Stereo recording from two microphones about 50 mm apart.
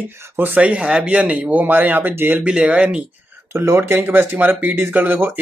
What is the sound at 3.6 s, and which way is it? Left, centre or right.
Speech, right.